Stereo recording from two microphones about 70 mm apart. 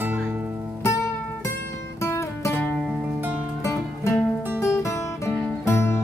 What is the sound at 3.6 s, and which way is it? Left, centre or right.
Music, left.